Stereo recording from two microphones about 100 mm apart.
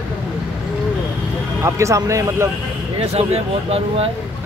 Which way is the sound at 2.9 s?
85° right.